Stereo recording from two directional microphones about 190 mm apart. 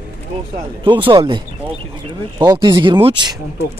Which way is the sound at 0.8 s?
25° right (ahead or behind).